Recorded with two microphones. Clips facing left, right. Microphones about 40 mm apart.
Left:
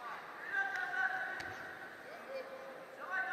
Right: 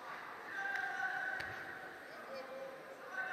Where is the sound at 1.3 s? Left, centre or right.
Centre.